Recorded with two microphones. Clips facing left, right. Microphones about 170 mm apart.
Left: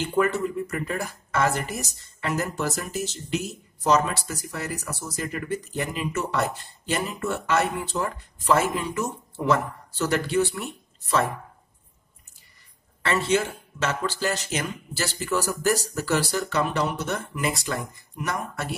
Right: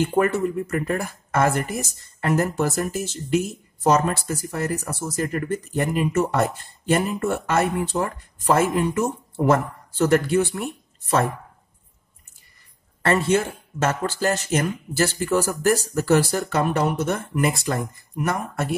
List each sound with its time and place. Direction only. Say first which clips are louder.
0.0 s speech: right 3 dB; 50° right (ahead or behind)
13.0 s speech: right 4 dB; 50° right (ahead or behind)